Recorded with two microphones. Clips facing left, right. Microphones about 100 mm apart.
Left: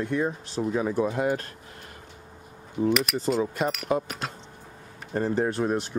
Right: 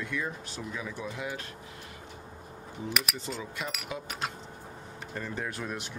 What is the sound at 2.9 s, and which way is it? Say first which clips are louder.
Speech: left 9 dB; centre (ahead or behind).